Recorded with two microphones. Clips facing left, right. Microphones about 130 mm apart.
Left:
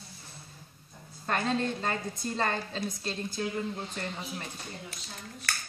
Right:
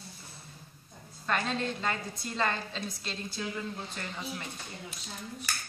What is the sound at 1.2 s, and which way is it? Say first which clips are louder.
A woman's voice: left 2 dB; 40° left (ahead or behind).